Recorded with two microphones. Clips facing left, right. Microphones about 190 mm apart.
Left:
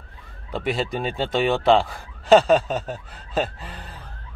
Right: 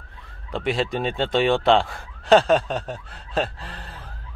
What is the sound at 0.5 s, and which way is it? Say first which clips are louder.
Speech: right 1 dB; centre (ahead or behind).